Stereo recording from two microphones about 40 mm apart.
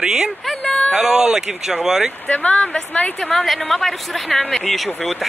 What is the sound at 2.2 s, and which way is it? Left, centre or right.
Speech, left.